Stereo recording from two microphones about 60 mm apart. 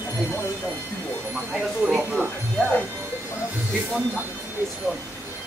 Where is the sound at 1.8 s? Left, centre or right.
Centre.